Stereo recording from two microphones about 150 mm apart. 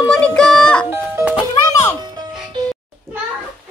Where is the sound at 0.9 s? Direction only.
10° right (ahead or behind).